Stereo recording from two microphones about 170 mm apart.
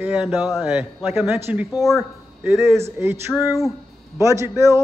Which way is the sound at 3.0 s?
15° right (ahead or behind).